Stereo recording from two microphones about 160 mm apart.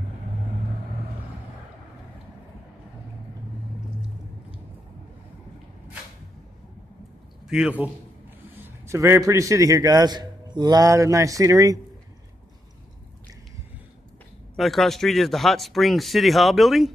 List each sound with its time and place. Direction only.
7.4 s a man's voice: 5° right (ahead or behind)
8.6 s a man's voice: 15° right (ahead or behind)
14.6 s speech: centre (ahead or behind)